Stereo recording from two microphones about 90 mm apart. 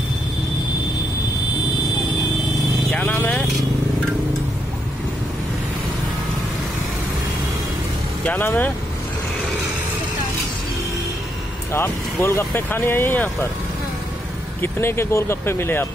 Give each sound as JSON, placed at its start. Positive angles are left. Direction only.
{"t": 2.9, "sound": "vehicle", "side_deg": 15}
{"t": 8.3, "sound": "speech", "side_deg": 20}
{"t": 11.7, "sound": "speech", "side_deg": 30}
{"t": 14.6, "sound": "speech", "side_deg": 25}